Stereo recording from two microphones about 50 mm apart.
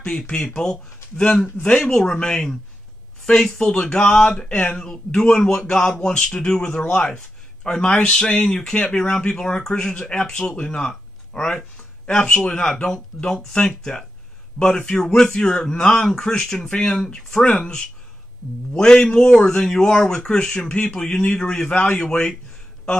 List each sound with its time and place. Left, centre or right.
0.1 s a man's voice: centre
18.7 s a man's voice: centre
21.7 s speech: left
22.0 s a man's voice: centre